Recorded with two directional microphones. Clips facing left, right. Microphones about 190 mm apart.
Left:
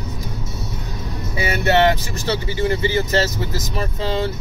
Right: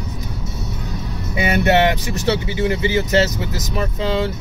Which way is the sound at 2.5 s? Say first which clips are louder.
Right 1 dB; 15° right (ahead or behind).